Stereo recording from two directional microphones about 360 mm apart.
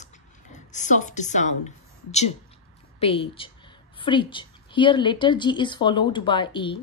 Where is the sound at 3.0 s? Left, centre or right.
Centre.